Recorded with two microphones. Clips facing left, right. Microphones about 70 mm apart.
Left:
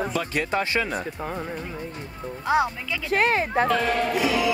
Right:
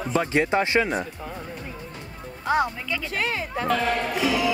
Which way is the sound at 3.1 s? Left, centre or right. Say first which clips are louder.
Left 9 dB; left.